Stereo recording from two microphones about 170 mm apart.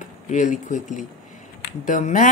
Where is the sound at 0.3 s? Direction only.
45° left (ahead or behind).